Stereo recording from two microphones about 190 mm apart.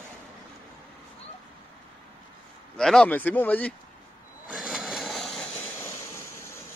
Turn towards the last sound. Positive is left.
turn(degrees=0)  # may be behind; listen again after turning